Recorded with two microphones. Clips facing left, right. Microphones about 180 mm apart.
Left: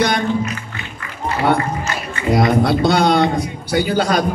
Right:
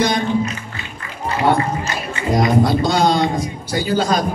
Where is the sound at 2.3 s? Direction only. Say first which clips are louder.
Even; 60° left (ahead or behind).